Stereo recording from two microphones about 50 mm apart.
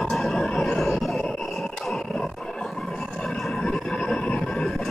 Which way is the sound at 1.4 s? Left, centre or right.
Centre.